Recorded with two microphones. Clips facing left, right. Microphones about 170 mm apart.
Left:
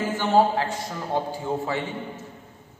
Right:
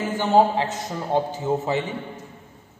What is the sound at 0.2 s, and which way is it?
A man's voice, 20° right (ahead or behind).